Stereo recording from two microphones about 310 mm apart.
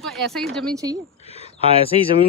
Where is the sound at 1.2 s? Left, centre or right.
Centre.